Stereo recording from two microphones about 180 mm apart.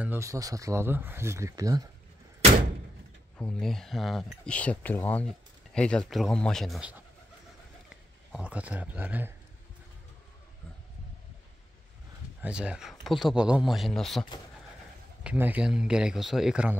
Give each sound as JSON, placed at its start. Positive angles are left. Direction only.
{"t": 0.0, "sound": "speech", "side_deg": -15}
{"t": 3.3, "sound": "speech", "side_deg": 5}
{"t": 8.3, "sound": "speech", "side_deg": -5}
{"t": 12.4, "sound": "speech", "side_deg": -5}
{"t": 15.2, "sound": "speech", "side_deg": -10}